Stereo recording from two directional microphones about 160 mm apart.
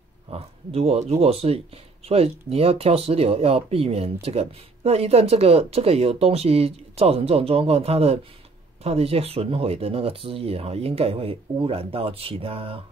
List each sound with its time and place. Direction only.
0.3 s speech: 40° right (ahead or behind)